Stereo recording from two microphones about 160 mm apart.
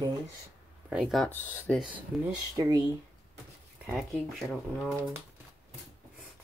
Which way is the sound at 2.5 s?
20° right (ahead or behind).